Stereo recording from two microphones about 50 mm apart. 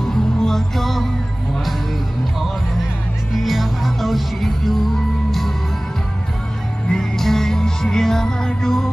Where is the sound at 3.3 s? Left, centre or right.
Centre.